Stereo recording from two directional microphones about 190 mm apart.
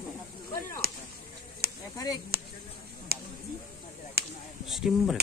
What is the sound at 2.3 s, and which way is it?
Speech, 55° right (ahead or behind).